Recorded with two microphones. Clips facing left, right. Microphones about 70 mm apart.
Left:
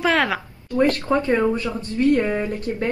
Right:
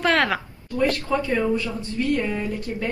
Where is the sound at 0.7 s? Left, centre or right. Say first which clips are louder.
Left 3 dB; left.